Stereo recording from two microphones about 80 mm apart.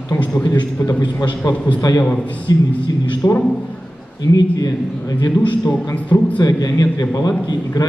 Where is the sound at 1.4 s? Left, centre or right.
Left.